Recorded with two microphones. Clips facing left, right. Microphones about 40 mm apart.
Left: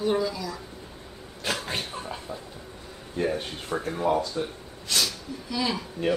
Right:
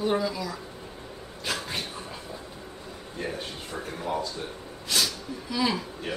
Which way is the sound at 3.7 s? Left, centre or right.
Left.